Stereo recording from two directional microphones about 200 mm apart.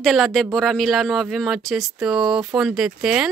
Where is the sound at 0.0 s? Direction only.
Centre (ahead or behind).